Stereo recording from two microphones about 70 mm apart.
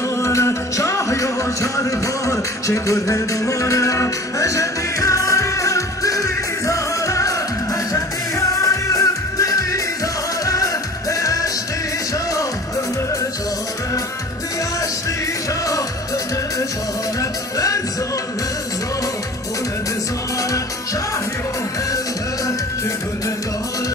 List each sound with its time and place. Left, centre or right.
0.2 s music: left
17.2 s music: left